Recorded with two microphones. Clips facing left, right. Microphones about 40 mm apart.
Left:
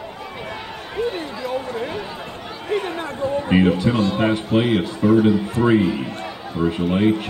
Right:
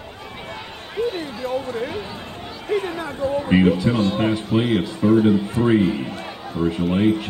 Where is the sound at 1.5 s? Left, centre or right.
Left.